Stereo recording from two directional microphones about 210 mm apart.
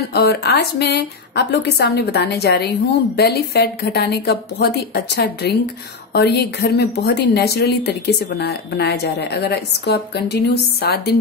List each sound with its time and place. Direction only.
0.1 s a woman's voice: 50° left (ahead or behind)